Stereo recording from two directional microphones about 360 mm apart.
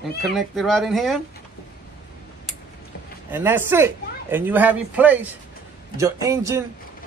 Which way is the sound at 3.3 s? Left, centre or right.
Centre.